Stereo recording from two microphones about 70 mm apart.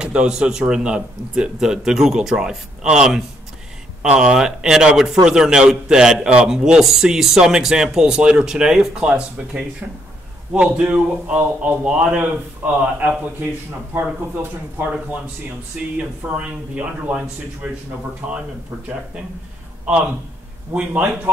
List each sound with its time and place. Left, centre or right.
0.0 s a man's voice: centre
16.0 s speech: centre
20.7 s a man's voice: centre